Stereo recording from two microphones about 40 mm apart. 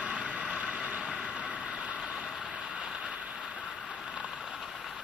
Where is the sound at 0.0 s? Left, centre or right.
Right.